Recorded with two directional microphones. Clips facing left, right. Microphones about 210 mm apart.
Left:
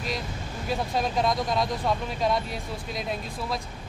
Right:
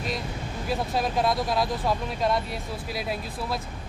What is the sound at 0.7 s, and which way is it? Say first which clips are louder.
Speech: even; centre (ahead or behind).